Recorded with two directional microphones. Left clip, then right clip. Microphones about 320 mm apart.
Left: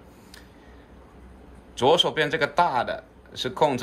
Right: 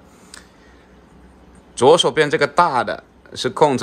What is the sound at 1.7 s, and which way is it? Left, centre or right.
Speech, centre.